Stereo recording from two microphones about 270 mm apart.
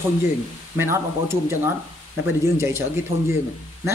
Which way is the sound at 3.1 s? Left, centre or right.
Right.